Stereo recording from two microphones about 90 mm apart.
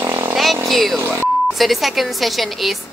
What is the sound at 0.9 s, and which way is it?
Speech, 30° right (ahead or behind).